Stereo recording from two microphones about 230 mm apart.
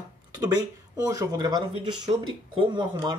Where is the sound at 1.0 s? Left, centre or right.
Centre.